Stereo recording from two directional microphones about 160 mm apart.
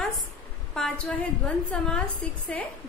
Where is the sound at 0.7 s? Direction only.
5° left (ahead or behind).